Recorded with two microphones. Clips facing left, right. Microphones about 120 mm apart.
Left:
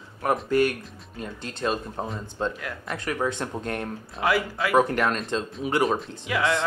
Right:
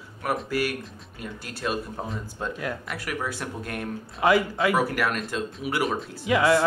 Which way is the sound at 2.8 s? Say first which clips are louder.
Left 4 dB; 25° left (ahead or behind).